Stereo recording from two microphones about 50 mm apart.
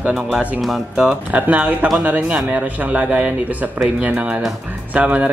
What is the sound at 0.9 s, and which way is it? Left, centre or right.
A man's voice, right.